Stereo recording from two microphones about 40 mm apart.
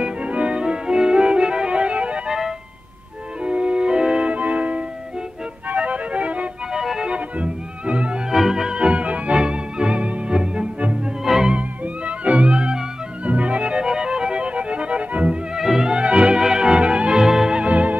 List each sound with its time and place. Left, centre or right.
0.0 s music: right
2.2 s music: centre
3.4 s music: right
4.3 s music: right
6.7 s music: centre
7.1 s music: right
8.3 s music: centre
8.7 s music: right
11.2 s music: centre
11.5 s music: right
15.5 s music: centre
15.9 s music: right
17.2 s music: centre
17.6 s music: right